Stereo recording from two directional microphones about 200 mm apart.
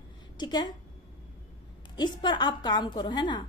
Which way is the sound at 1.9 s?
20° left (ahead or behind).